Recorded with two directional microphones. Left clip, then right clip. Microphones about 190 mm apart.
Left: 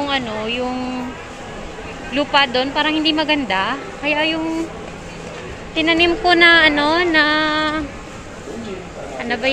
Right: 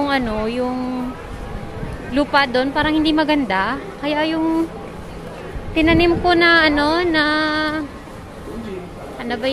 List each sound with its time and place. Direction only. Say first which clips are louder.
0.0 s speech: right 1 dB; 30° right (ahead or behind)
2.1 s speech: even; 25° right (ahead or behind)
5.8 s speech: even; 20° right (ahead or behind)
9.2 s speech: left 2 dB; 15° right (ahead or behind)